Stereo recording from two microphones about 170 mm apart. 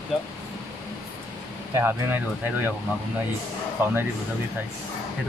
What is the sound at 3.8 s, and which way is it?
Speech, 15° right (ahead or behind).